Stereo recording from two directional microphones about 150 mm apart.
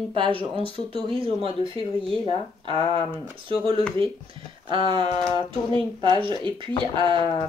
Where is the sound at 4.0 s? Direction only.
35° right (ahead or behind).